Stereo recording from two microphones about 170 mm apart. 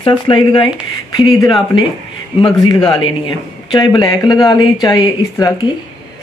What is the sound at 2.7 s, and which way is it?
Speech, 30° left (ahead or behind).